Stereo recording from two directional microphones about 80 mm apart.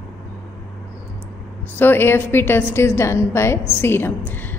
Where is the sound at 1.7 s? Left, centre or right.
Left.